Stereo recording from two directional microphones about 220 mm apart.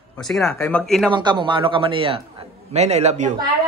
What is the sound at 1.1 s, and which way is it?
Speech, 20° right (ahead or behind).